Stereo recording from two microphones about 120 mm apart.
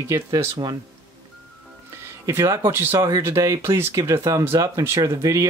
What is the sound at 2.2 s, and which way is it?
Speech, 25° right (ahead or behind).